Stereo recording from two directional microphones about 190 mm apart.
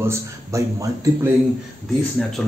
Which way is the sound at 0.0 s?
15° right (ahead or behind).